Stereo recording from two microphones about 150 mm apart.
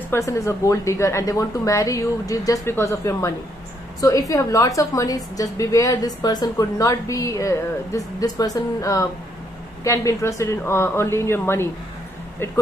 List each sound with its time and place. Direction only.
0.1 s a woman's voice: 20° left (ahead or behind)